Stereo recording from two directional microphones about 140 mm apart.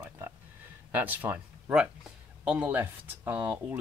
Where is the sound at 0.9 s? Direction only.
10° right (ahead or behind).